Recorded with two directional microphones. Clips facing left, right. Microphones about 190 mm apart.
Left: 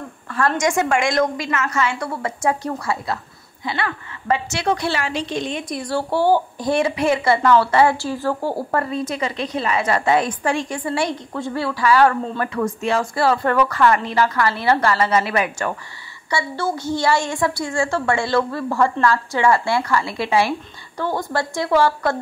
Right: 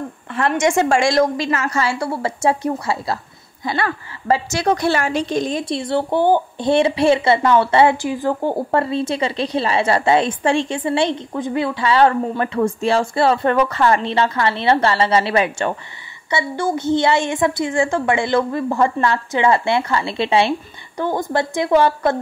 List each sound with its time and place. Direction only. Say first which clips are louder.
0.6 s a woman's voice: right 5 dB; 25° right (ahead or behind)
3.6 s a woman's voice: right 3 dB; 40° right (ahead or behind); by 22.1 s 20° right (ahead or behind)